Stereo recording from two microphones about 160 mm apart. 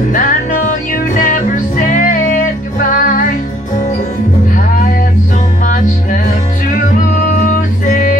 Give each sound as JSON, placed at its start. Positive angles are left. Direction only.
{"t": 0.1, "sound": "music", "side_deg": 55}
{"t": 7.4, "sound": "music", "side_deg": 50}